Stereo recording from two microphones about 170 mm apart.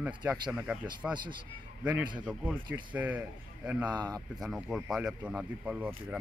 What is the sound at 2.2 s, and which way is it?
A man's voice, 5° right (ahead or behind).